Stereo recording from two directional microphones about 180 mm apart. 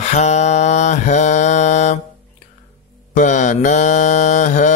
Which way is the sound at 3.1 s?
45° left (ahead or behind).